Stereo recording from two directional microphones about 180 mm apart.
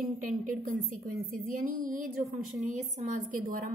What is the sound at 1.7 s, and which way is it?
Mantra, 50° right (ahead or behind).